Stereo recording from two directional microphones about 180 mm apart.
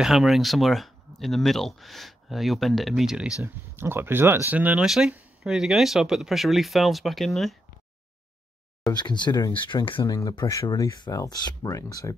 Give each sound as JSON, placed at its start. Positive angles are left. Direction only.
{"t": 0.0, "sound": "speech", "side_deg": 0}
{"t": 8.8, "sound": "speech", "side_deg": 25}